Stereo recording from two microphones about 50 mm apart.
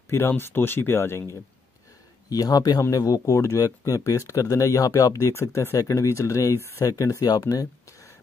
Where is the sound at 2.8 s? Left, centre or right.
Left.